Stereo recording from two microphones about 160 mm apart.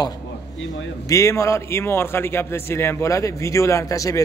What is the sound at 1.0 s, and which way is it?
A man's voice, 20° left (ahead or behind).